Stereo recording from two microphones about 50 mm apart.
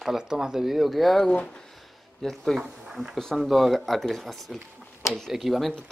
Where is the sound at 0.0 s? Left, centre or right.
Centre.